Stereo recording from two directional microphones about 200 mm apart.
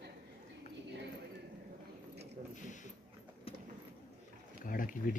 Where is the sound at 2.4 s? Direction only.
30° right (ahead or behind).